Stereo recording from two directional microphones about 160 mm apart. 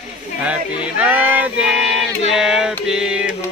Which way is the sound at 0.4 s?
10° right (ahead or behind).